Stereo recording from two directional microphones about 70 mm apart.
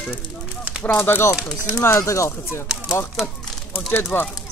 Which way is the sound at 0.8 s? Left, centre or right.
Left.